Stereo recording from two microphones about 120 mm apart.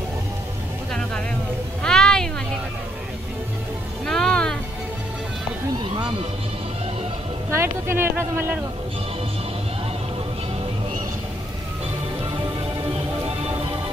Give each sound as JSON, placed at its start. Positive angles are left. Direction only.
{"t": 1.8, "sound": "music", "side_deg": 5}
{"t": 4.0, "sound": "a sound", "side_deg": 5}
{"t": 7.5, "sound": "speech", "side_deg": -20}